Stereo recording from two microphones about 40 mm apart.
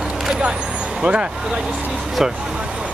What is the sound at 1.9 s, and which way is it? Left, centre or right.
Vehicle, centre.